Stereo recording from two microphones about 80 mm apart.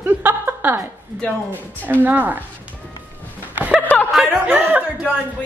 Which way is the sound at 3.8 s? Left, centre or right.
Centre.